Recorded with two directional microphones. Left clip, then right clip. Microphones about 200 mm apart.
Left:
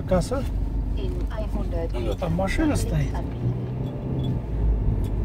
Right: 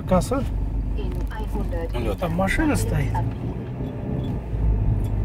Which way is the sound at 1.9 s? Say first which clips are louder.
Right 3 dB; 25° right (ahead or behind).